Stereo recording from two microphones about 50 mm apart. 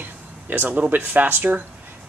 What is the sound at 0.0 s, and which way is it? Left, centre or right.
Speech, right.